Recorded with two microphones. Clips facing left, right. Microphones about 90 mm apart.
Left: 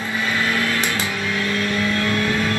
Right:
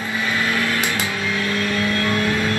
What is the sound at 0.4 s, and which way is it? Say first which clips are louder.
Microwave oven: even; 15° right (ahead or behind).